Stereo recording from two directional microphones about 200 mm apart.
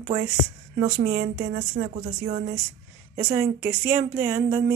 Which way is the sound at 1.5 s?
25° right (ahead or behind).